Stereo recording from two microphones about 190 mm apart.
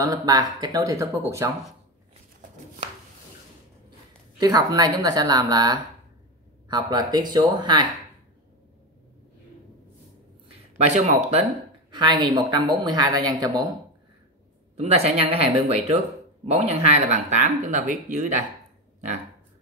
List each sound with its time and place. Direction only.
0.0 s speech: 20° right (ahead or behind)
4.4 s speech: 20° right (ahead or behind)
11.0 s speech: 35° right (ahead or behind)
11.9 s speech: 25° right (ahead or behind)
14.8 s speech: 35° right (ahead or behind)